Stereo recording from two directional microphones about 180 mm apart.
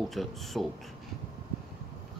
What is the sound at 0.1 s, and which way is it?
Speech, centre (ahead or behind).